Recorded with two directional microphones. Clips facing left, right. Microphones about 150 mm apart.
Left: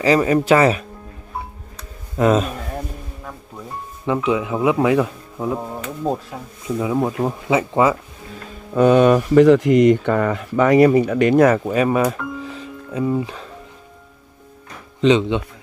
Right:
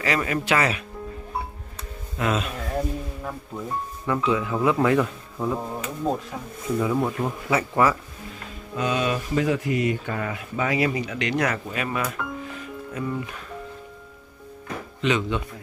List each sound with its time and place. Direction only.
0.0 s speech: 35° left (ahead or behind)
2.1 s speech: 40° left (ahead or behind)
4.0 s speech: 20° left (ahead or behind)
6.8 s speech: 20° left (ahead or behind)
8.7 s speech: 55° left (ahead or behind)
10.9 s speech: 50° left (ahead or behind)
11.6 s speech: 40° left (ahead or behind)
12.1 s music: 25° left (ahead or behind)
15.0 s speech: 25° left (ahead or behind)